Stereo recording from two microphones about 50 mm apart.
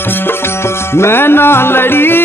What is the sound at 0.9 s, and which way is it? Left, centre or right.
Music, left.